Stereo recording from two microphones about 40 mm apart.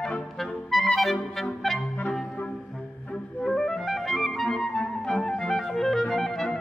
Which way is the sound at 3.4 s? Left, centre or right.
Centre.